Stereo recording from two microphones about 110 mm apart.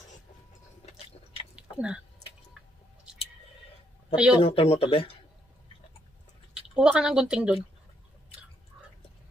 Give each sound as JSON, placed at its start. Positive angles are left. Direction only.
{"t": 0.8, "sound": "chewing", "side_deg": 65}
{"t": 1.5, "sound": "chewing", "side_deg": -10}
{"t": 4.1, "sound": "speech", "side_deg": -10}
{"t": 4.4, "sound": "speech", "side_deg": 55}
{"t": 6.7, "sound": "a woman's voice", "side_deg": -5}